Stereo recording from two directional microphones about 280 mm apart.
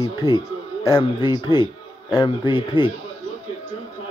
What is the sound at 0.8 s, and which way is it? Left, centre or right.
Speech, centre.